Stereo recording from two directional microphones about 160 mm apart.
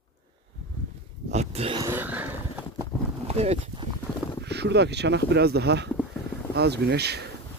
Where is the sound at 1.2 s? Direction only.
40° right (ahead or behind).